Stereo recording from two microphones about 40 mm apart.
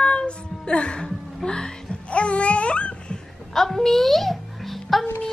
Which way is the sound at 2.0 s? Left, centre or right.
Left.